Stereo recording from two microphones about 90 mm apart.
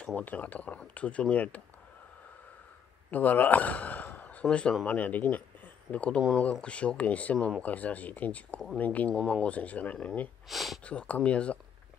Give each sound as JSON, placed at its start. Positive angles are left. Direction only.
{"t": 0.0, "sound": "speech", "side_deg": 15}
{"t": 3.1, "sound": "a man's voice", "side_deg": 20}
{"t": 10.5, "sound": "speech", "side_deg": 0}
{"t": 10.9, "sound": "speech", "side_deg": 15}